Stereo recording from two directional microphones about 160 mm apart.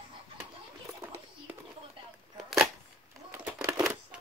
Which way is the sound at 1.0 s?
15° right (ahead or behind).